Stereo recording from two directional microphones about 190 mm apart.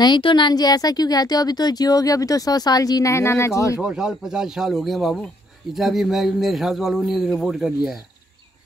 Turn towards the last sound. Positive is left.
turn(degrees=0)  # may be behind; listen again after turning